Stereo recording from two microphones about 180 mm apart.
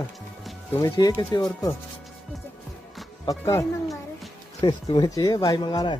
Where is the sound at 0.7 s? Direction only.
20° left (ahead or behind).